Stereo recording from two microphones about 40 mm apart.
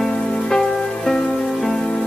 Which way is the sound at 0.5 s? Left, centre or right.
Centre.